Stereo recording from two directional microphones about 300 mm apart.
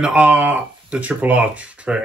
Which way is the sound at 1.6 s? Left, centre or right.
Centre.